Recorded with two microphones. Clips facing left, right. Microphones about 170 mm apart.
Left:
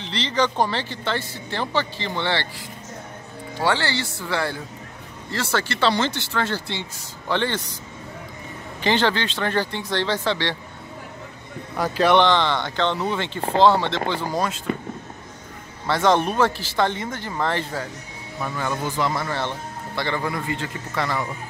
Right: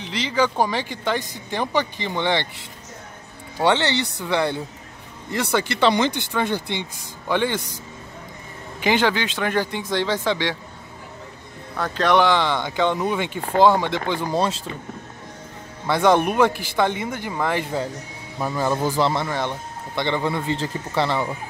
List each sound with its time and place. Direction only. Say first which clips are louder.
0.0 s speech: right 1 dB; 10° right (ahead or behind)
3.6 s a man's voice: right 3 dB; 20° right (ahead or behind)
8.8 s speech: right 1 dB; 10° right (ahead or behind)
11.7 s speech: left 1 dB; 10° left (ahead or behind)
12.2 s speech: even; 10° right (ahead or behind)
15.9 s speech: right 2 dB; 10° right (ahead or behind)
18.4 s a man's voice: right 4 dB; 35° right (ahead or behind)
19.2 s a man's voice: right 1 dB; 15° right (ahead or behind)